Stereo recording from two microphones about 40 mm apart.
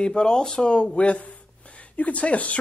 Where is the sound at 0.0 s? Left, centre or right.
Left.